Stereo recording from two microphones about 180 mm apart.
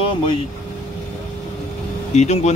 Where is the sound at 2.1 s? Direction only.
40° left (ahead or behind).